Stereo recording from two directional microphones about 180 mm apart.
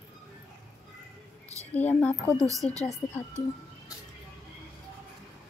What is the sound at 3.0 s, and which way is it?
Speech, 15° left (ahead or behind).